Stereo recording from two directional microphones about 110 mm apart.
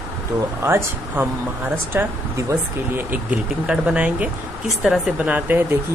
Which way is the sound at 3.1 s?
10° right (ahead or behind).